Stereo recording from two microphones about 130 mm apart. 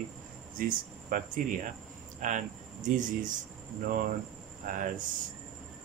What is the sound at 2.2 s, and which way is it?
Speech, 75° right (ahead or behind).